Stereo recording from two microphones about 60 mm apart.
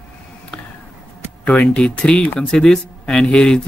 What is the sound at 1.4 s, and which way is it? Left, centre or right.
Speech, centre.